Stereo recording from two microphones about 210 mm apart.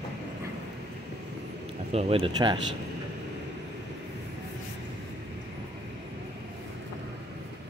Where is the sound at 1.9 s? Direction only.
30° right (ahead or behind).